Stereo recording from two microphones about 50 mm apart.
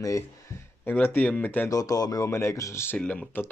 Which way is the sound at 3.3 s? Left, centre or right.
Left.